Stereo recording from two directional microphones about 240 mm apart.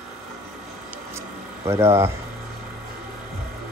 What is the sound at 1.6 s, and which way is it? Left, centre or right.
Speech, centre.